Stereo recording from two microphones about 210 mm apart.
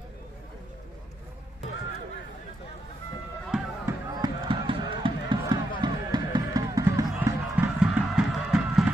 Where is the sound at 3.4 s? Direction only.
5° right (ahead or behind).